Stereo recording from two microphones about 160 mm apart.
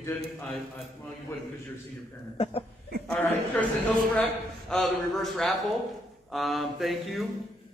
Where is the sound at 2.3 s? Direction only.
35° left (ahead or behind).